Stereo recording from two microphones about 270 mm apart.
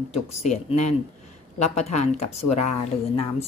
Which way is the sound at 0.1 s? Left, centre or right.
Left.